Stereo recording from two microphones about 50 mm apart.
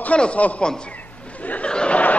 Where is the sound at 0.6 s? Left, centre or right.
Centre.